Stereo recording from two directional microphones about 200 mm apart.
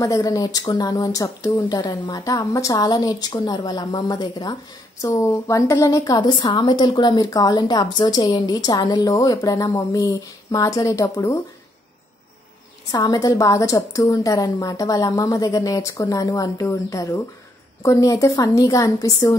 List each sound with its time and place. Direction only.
0.0 s a woman's voice: 15° left (ahead or behind)
12.9 s a woman's voice: 20° left (ahead or behind)